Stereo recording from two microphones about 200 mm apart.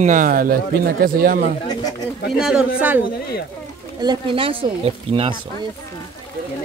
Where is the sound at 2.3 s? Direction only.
Centre (ahead or behind).